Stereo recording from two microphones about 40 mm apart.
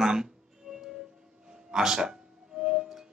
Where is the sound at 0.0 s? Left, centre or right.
Centre.